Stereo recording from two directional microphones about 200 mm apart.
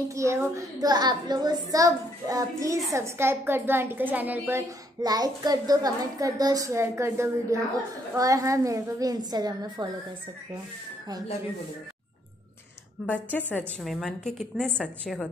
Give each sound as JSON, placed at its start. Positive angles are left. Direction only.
{"t": 0.1, "sound": "a woman's voice", "side_deg": -15}
{"t": 13.0, "sound": "a woman's voice", "side_deg": 5}